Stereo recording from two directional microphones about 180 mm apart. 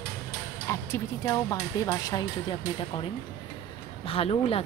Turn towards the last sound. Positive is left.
turn(degrees=30)  # may be behind; listen again after turning